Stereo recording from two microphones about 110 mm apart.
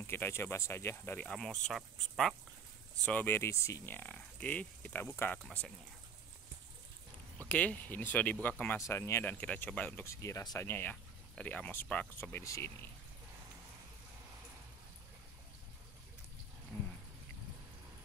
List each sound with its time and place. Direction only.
0.0 s speech: 20° left (ahead or behind)
1.3 s speech: 5° left (ahead or behind)
3.1 s speech: 15° left (ahead or behind)
7.3 s speech: 15° left (ahead or behind)
8.7 s speech: 25° left (ahead or behind)
9.2 s speech: 15° left (ahead or behind)
10.0 s speech: 25° left (ahead or behind)